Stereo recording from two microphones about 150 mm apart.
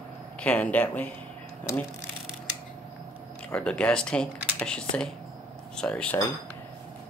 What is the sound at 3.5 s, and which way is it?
Speech, 5° left (ahead or behind).